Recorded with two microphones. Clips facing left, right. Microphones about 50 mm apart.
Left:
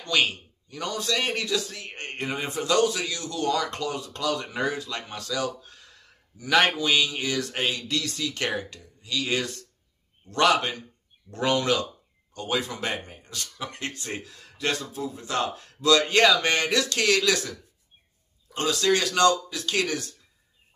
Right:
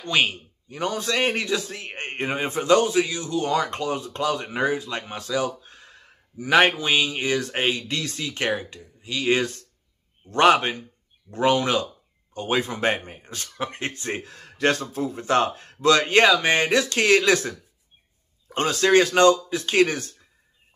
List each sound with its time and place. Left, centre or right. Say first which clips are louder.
0.0 s a man's voice: right 2 dB; right
16.3 s speech: right 3 dB; centre
16.5 s speech: right 4 dB; right